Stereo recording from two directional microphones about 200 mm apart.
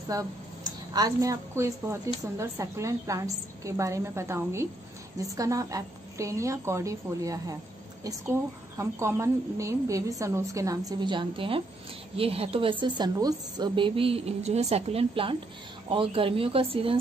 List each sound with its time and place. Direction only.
0.1 s a woman's voice: 15° right (ahead or behind)
8.7 s a woman's voice: 15° right (ahead or behind)